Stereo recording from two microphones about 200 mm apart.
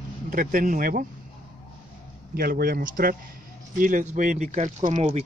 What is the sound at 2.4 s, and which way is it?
Speech, 50° right (ahead or behind).